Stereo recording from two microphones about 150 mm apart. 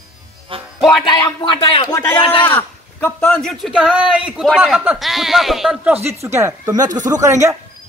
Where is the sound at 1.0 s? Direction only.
30° left (ahead or behind).